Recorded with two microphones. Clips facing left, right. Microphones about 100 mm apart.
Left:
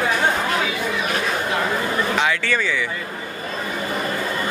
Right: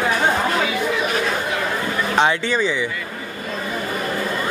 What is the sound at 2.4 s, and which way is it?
Speech, 20° right (ahead or behind).